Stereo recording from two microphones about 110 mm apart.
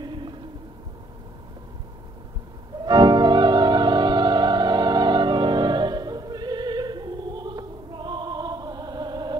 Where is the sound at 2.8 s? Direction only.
40° right (ahead or behind).